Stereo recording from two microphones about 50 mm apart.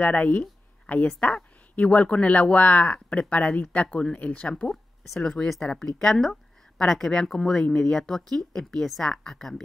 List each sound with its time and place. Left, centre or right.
0.0 s speech: left
4.6 s speech: centre